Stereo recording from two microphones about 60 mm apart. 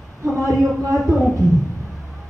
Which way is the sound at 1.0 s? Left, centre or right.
Centre.